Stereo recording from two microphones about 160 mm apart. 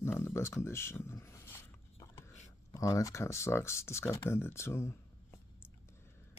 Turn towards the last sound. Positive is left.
turn(degrees=15)  # may be behind; listen again after turning